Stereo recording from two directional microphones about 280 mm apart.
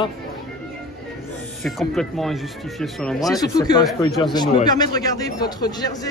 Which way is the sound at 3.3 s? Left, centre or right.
Centre.